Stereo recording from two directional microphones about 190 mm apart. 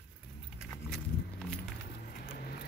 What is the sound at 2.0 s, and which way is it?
Vehicle, 55° left (ahead or behind).